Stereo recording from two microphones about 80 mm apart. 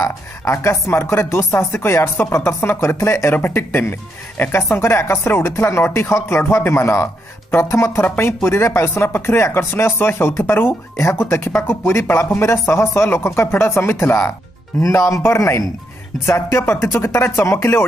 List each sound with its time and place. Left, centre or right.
0.0 s speech: left